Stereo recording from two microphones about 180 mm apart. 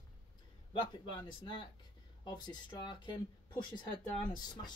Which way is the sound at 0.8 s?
25° left (ahead or behind).